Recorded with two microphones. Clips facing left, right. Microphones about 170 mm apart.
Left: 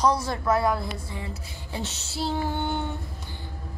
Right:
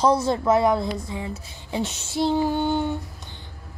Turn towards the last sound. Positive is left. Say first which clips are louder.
# left 2 dB
turn(degrees=-20)  # may be behind; listen again after turning